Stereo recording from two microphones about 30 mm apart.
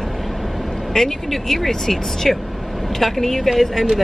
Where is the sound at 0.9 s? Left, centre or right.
Centre.